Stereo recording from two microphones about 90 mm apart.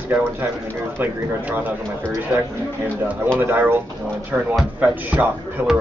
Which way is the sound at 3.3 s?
20° right (ahead or behind).